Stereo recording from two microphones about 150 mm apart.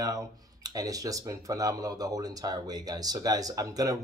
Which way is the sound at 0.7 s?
25° right (ahead or behind).